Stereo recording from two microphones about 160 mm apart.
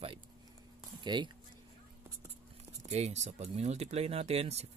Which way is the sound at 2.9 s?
45° right (ahead or behind).